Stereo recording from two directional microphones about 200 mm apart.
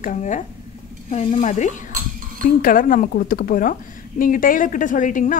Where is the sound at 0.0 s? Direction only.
40° left (ahead or behind).